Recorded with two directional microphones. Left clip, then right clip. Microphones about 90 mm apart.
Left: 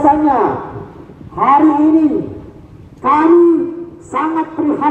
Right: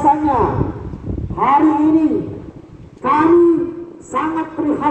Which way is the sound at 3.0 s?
40° left (ahead or behind).